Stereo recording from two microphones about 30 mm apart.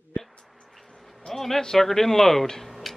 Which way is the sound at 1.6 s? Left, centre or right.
Centre.